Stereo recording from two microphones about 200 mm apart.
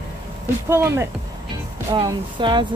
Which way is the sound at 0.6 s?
10° right (ahead or behind).